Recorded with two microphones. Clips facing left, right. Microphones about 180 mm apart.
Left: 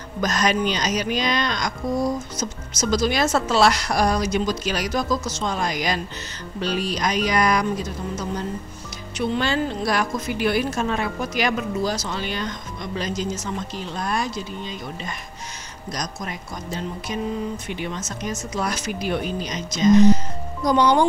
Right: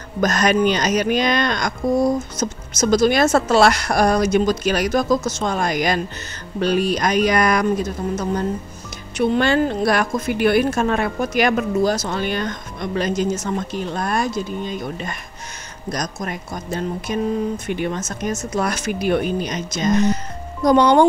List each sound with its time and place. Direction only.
0.2 s speech: 55° right (ahead or behind)